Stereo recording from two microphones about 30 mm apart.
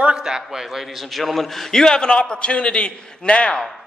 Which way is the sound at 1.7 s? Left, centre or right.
Left.